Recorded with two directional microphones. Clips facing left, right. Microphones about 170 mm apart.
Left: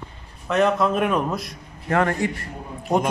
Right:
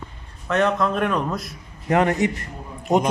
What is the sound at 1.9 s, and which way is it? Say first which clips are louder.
Speech: right 2 dB; 20° right (ahead or behind).